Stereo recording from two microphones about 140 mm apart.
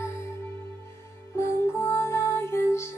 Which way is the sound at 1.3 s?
20° left (ahead or behind).